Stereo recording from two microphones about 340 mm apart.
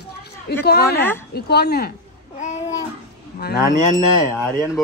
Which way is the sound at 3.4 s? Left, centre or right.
Left.